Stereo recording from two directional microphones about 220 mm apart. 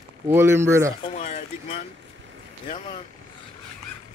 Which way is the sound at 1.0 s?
30° left (ahead or behind).